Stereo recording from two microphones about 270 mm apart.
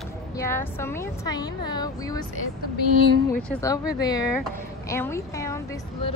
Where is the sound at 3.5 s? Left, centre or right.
Centre.